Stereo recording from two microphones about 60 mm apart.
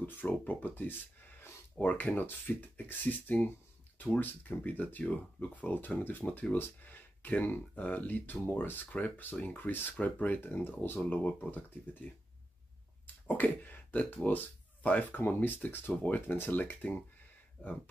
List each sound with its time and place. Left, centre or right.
0.0 s speech: left
13.0 s speech: left